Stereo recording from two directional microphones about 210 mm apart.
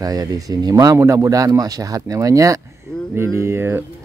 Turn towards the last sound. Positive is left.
turn(degrees=-10)  # may be behind; listen again after turning